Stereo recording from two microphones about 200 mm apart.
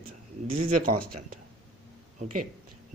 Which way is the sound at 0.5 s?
45° right (ahead or behind).